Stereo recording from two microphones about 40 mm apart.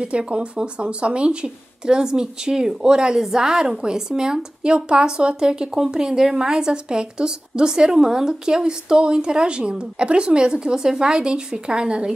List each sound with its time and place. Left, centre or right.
0.0 s speech: right